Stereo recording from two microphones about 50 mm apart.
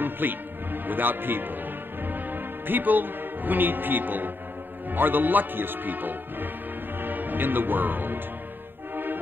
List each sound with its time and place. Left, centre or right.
0.0 s music: right
0.8 s a man's voice: right
7.0 s music: right